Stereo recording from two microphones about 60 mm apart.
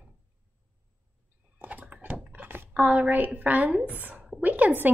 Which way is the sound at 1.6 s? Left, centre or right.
Right.